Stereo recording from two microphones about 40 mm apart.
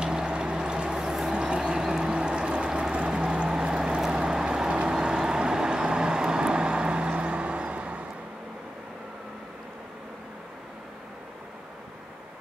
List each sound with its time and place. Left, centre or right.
0.0 s a sound: centre
1.3 s boat: right
3.6 s vehicle: right